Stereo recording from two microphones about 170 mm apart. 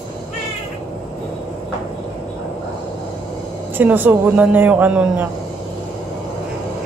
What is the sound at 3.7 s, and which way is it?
A man's voice, 10° right (ahead or behind).